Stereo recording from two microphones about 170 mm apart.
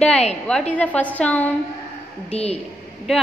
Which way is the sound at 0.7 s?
10° left (ahead or behind).